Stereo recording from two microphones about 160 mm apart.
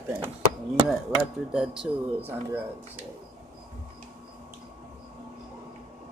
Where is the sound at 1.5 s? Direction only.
5° right (ahead or behind).